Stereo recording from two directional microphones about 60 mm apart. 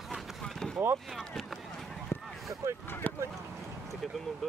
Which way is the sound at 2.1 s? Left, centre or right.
Left.